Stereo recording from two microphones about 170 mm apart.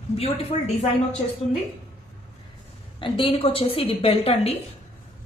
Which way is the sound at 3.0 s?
30° left (ahead or behind).